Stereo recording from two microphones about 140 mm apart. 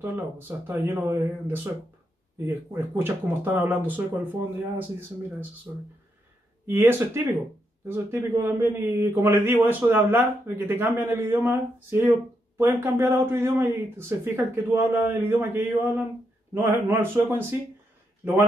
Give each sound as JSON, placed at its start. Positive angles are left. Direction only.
{"t": 0.0, "sound": "speech", "side_deg": -15}
{"t": 6.6, "sound": "speech", "side_deg": -15}